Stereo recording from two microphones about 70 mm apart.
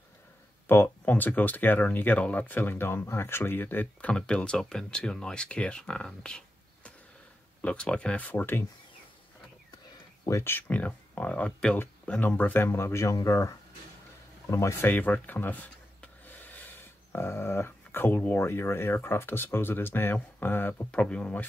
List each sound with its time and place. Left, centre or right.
0.8 s speech: left
10.4 s speech: left
14.9 s a sound: left
17.2 s speech: left
20.8 s speech: centre